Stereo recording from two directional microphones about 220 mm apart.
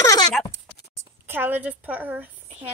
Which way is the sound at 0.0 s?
15° left (ahead or behind).